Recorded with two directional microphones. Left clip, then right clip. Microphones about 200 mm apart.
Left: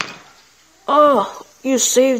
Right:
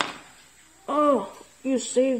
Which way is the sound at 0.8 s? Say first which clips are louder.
Left 10 dB; 15° left (ahead or behind).